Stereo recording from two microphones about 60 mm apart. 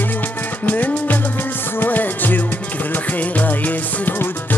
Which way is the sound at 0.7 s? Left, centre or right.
Left.